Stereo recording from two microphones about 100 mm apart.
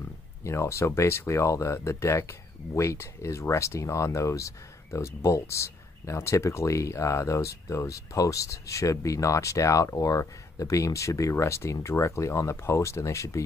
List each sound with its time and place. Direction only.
0.4 s speech: 30° left (ahead or behind)